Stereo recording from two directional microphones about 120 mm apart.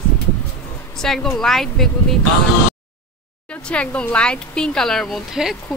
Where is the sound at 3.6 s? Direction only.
10° left (ahead or behind).